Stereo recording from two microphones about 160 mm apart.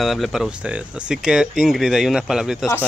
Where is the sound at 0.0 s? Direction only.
Centre (ahead or behind).